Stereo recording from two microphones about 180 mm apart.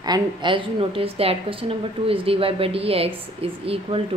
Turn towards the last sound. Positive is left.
turn(degrees=-30)  # may be behind; listen again after turning